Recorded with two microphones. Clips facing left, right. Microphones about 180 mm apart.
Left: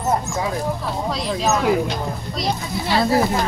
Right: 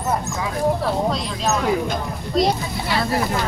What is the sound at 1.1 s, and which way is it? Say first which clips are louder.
Speech: left 2 dB; 5° left (ahead or behind).